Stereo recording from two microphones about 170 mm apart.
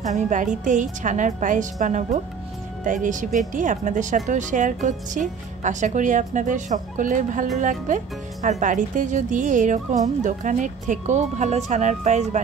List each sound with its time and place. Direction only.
0.0 s speech: 45° right (ahead or behind)